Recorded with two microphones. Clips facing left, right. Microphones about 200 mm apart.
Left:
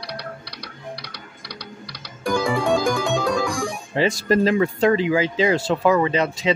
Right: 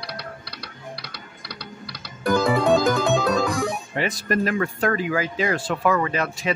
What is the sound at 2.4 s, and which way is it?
Music, 5° right (ahead or behind).